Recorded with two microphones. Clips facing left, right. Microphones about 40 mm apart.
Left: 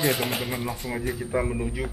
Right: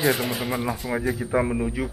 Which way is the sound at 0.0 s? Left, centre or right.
Centre.